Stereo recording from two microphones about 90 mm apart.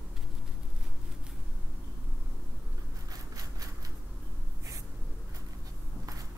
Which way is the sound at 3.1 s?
45° right (ahead or behind).